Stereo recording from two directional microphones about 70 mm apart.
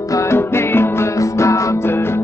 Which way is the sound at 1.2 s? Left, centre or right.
Left.